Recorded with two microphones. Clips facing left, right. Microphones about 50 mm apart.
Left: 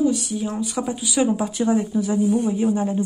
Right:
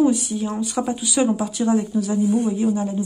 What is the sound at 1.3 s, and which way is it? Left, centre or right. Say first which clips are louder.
Speech: even; centre.